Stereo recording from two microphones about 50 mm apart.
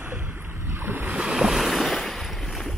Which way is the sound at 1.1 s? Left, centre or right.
Centre.